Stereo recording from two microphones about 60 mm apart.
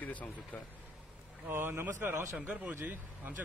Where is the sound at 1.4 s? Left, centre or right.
Right.